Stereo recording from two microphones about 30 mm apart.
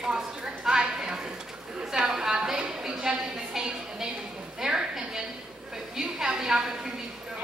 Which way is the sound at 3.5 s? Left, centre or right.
Centre.